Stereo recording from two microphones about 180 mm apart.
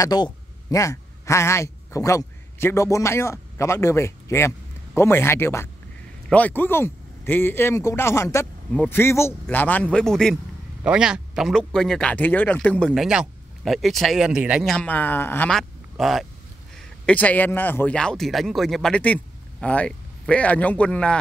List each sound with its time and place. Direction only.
0.0 s a man's voice: 20° left (ahead or behind)